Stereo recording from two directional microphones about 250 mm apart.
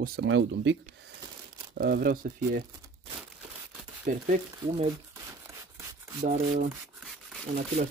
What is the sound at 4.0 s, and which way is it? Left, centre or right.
Speech, right.